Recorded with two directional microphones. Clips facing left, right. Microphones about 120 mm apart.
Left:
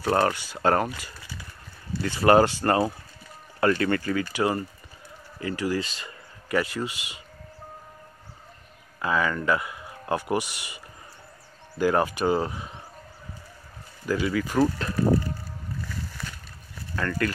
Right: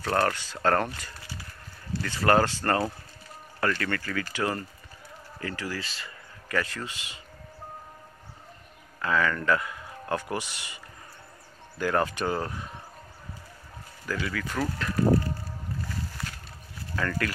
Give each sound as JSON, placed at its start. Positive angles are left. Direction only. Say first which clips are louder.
{"t": 0.0, "sound": "speech", "louder": "left 3 dB", "side_deg": 15}
{"t": 9.0, "sound": "speech", "louder": "left 1 dB", "side_deg": 15}
{"t": 11.8, "sound": "speech", "louder": "left 4 dB", "side_deg": 15}
{"t": 14.0, "sound": "speech", "louder": "left 6 dB", "side_deg": 20}
{"t": 14.6, "sound": "speech", "louder": "left 7 dB", "side_deg": 30}
{"t": 16.9, "sound": "speech", "louder": "left 2 dB", "side_deg": 0}